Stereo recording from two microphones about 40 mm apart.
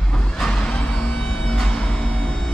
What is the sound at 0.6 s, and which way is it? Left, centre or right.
Music, left.